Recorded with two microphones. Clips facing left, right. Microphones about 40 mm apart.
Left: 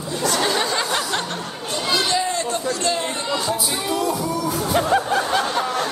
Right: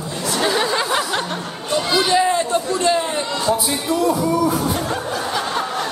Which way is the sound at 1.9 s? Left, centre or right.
Right.